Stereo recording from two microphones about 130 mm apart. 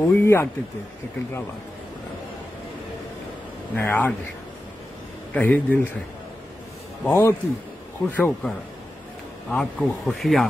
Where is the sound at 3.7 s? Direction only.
15° left (ahead or behind).